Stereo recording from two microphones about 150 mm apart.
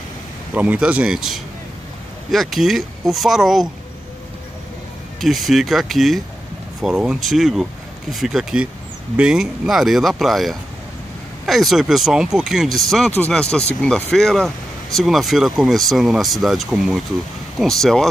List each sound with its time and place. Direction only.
0.6 s speech: 10° right (ahead or behind)
5.2 s speech: centre (ahead or behind)